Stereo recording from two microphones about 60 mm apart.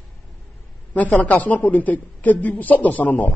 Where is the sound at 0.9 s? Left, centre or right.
Left.